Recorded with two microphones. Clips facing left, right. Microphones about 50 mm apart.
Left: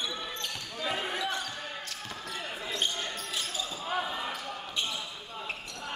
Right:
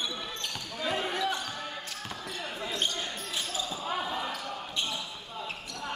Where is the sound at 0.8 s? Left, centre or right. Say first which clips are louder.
Right 2 dB; centre.